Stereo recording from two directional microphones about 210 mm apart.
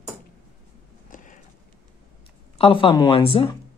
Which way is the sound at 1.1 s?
40° left (ahead or behind).